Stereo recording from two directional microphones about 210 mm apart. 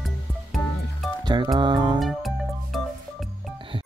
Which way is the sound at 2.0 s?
Centre (ahead or behind).